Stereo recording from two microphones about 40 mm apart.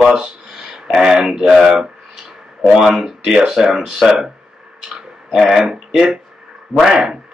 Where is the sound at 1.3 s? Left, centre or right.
Centre.